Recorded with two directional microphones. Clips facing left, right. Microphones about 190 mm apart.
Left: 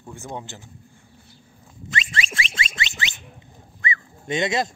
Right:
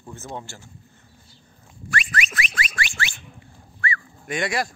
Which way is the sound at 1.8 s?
20° left (ahead or behind).